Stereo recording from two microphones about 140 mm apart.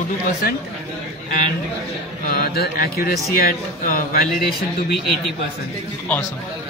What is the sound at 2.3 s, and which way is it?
A man's voice, 90° left.